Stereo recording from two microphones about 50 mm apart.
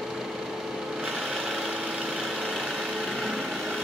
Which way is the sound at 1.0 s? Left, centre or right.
Centre.